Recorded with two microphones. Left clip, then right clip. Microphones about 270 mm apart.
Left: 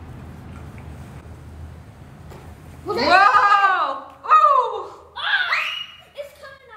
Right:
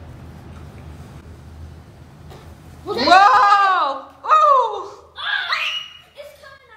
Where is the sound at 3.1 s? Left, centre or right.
Centre.